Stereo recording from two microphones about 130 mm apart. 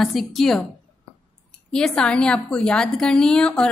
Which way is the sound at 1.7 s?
5° left (ahead or behind).